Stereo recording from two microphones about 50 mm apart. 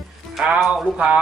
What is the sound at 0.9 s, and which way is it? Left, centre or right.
Speech, centre.